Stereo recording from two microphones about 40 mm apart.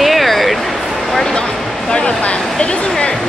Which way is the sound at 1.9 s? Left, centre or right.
Left.